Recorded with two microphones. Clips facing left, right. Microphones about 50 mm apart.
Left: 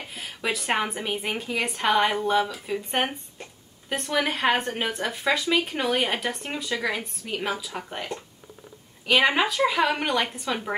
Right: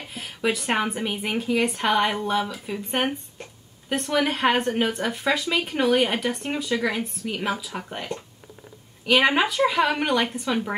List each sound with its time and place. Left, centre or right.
0.1 s a woman's voice: centre